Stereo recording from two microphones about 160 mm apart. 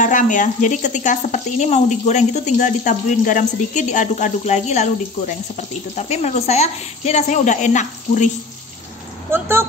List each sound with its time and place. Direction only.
0.0 s speech: 55° left (ahead or behind)
9.3 s speech: 15° right (ahead or behind)